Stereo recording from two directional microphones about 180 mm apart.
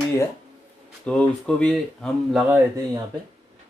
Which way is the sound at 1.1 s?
5° left (ahead or behind).